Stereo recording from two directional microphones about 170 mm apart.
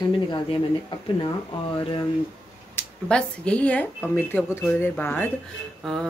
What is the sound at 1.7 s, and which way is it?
Speech, 30° left (ahead or behind).